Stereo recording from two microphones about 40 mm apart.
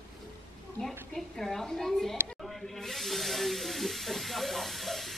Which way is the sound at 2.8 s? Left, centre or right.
Centre.